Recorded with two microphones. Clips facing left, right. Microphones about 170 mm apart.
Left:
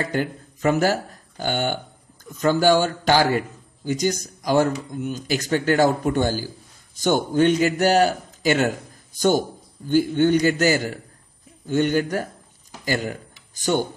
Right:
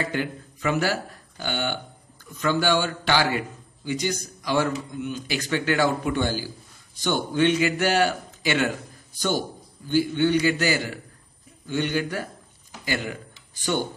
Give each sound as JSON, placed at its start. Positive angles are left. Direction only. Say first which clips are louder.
{"t": 0.0, "sound": "a man's voice", "louder": "left 3 dB", "side_deg": 45}
{"t": 9.8, "sound": "a man's voice", "louder": "left 3 dB", "side_deg": 45}